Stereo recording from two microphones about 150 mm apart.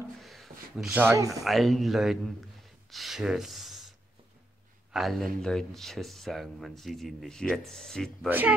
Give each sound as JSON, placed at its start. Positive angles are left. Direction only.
{"t": 0.2, "sound": "a sound", "side_deg": 0}
{"t": 1.1, "sound": "speech", "side_deg": -20}
{"t": 1.4, "sound": "speech", "side_deg": 0}
{"t": 4.9, "sound": "speech", "side_deg": 0}
{"t": 8.3, "sound": "a man's voice", "side_deg": -10}